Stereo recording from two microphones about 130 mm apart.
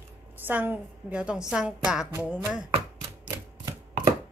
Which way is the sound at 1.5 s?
5° right (ahead or behind).